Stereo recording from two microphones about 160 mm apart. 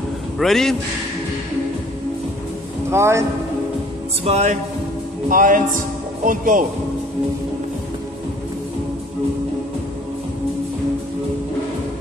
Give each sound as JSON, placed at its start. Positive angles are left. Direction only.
{"t": 0.4, "sound": "a man's voice", "side_deg": 0}
{"t": 2.9, "sound": "speech", "side_deg": -15}
{"t": 4.2, "sound": "speech", "side_deg": -45}
{"t": 5.3, "sound": "speech", "side_deg": -60}